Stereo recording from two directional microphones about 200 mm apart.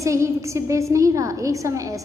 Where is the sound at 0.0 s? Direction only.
15° right (ahead or behind).